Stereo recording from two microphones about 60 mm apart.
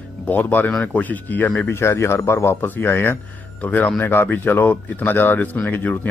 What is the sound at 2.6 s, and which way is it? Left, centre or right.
Speech, left.